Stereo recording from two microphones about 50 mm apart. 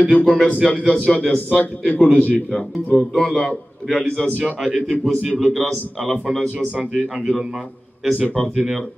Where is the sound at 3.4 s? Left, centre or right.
Left.